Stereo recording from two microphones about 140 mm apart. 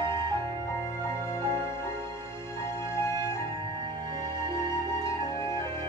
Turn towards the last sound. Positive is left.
turn(degrees=20)  # may be behind; listen again after turning